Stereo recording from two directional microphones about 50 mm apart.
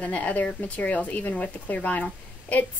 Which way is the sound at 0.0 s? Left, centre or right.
Left.